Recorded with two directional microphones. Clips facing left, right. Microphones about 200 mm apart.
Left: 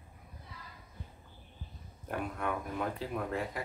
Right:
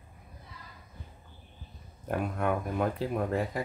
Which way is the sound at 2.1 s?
50° right (ahead or behind).